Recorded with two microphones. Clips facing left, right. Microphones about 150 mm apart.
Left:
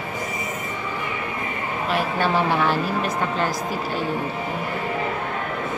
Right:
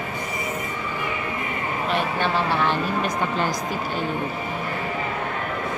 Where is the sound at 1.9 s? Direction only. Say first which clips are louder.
Left 2 dB; 5° left (ahead or behind).